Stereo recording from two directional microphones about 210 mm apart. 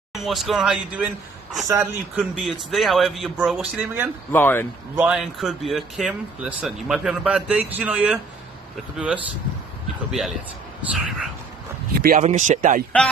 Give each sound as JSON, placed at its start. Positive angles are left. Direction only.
{"t": 0.1, "sound": "speech", "side_deg": 0}
{"t": 1.7, "sound": "speech", "side_deg": -15}
{"t": 2.3, "sound": "speech", "side_deg": 0}
{"t": 4.3, "sound": "speech", "side_deg": 10}
{"t": 4.9, "sound": "speech", "side_deg": -5}
{"t": 10.8, "sound": "speech", "side_deg": 0}
{"t": 12.0, "sound": "speech", "side_deg": -40}